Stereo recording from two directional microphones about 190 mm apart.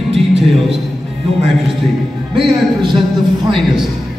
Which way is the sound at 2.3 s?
25° right (ahead or behind).